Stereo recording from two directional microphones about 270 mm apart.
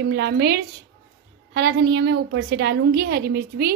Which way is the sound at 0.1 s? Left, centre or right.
Right.